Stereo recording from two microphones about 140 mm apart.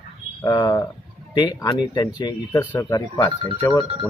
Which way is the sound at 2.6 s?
10° left (ahead or behind).